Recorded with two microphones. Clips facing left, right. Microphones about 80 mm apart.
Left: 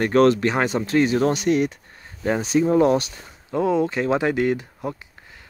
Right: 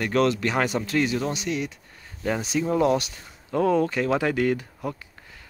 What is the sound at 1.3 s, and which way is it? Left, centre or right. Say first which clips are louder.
Speech: left 8 dB; left.